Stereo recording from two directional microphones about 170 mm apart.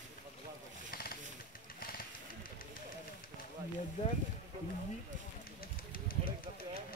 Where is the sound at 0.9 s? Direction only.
60° left (ahead or behind).